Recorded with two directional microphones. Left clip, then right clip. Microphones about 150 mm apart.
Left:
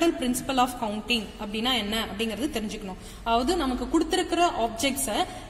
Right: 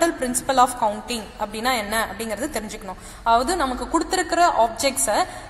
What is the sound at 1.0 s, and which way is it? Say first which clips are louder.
Speech: right 1 dB; 35° right (ahead or behind).